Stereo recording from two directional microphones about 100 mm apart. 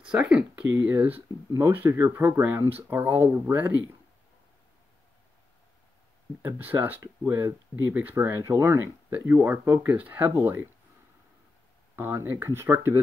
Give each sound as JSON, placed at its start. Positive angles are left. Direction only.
{"t": 0.0, "sound": "speech", "side_deg": -10}
{"t": 6.4, "sound": "speech", "side_deg": -20}
{"t": 11.9, "sound": "speech", "side_deg": -25}